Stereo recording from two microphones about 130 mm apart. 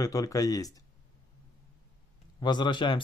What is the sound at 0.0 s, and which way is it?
Speech, 25° left (ahead or behind).